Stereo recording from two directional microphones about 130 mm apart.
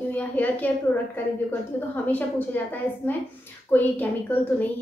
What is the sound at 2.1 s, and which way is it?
A woman's voice, 15° left (ahead or behind).